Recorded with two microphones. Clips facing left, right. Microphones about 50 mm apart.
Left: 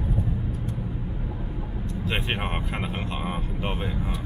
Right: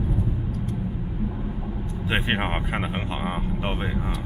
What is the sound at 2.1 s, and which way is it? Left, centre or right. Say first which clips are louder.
Speech: right 4 dB; centre.